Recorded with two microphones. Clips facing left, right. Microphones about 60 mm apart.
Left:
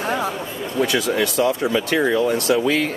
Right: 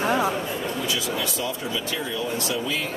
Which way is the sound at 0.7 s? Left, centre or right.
Left.